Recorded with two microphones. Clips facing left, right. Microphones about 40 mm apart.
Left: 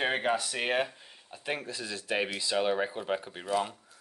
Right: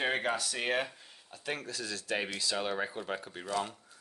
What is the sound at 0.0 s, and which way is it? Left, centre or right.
Speech, left.